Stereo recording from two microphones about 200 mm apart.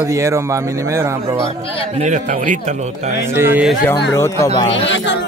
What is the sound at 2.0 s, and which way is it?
Speech, 35° right (ahead or behind).